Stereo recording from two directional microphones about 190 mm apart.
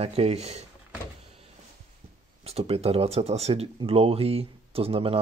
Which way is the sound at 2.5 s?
35° right (ahead or behind).